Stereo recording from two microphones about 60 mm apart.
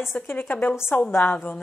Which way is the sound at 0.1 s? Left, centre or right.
Left.